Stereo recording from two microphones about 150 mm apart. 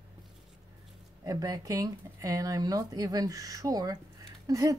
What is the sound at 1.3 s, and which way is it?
Speech, 25° right (ahead or behind).